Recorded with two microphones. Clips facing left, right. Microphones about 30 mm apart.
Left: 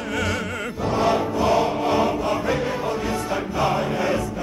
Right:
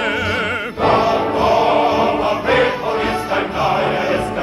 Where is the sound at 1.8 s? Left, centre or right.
Right.